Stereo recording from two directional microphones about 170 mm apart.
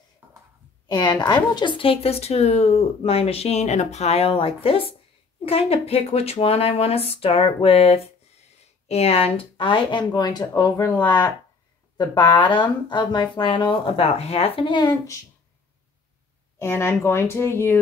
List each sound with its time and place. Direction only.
0.8 s a woman's voice: 25° left (ahead or behind)
12.0 s speech: 25° left (ahead or behind)
16.5 s speech: 15° left (ahead or behind)